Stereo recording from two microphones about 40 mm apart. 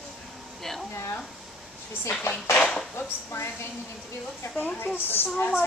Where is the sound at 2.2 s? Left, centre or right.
Left.